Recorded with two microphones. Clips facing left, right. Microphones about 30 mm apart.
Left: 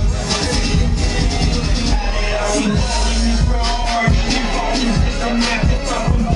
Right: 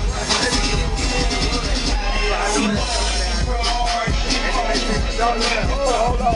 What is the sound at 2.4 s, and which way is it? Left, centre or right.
Music, right.